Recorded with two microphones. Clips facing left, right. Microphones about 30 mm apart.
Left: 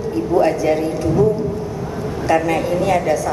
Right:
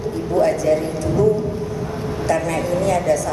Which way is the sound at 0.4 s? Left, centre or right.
Centre.